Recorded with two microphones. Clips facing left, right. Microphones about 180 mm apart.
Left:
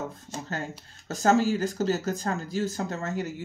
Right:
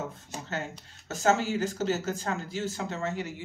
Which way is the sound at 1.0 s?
35° left (ahead or behind).